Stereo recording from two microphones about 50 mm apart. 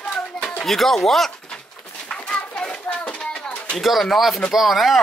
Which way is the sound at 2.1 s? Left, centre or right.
Left.